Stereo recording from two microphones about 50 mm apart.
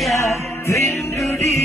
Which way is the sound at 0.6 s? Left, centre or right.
Left.